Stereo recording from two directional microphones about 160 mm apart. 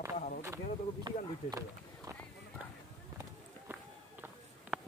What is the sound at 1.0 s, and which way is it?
Speech, 20° right (ahead or behind).